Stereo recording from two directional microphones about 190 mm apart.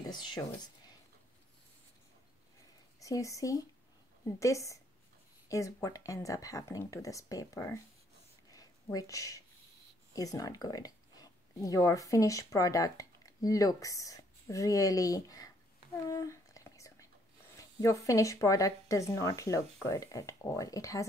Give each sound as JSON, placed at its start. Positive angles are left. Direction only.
{"t": 0.2, "sound": "speech", "side_deg": 25}
{"t": 3.0, "sound": "speech", "side_deg": 15}
{"t": 8.5, "sound": "a sound", "side_deg": 20}
{"t": 10.1, "sound": "speech", "side_deg": 20}
{"t": 16.1, "sound": "whispering", "side_deg": 15}
{"t": 17.6, "sound": "speech", "side_deg": 15}